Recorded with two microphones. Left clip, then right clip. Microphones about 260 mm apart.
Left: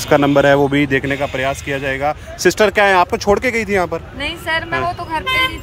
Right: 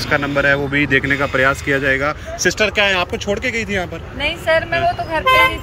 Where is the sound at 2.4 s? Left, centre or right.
Left.